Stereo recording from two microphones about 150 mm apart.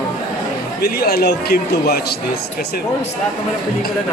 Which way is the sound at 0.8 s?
90° left.